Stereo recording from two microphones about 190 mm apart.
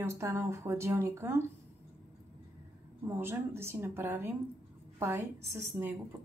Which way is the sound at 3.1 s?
10° right (ahead or behind).